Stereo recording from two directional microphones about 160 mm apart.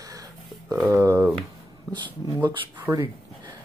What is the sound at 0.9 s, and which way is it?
Speech, 20° right (ahead or behind).